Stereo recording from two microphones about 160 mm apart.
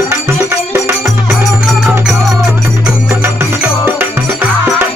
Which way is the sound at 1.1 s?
5° right (ahead or behind).